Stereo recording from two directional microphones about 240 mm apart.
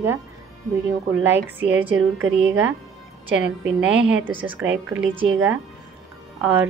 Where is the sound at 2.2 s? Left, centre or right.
Centre.